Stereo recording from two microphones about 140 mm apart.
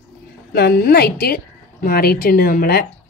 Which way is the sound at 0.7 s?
90° left.